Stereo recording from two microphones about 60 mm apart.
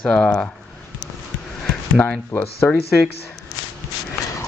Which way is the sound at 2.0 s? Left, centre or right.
Left.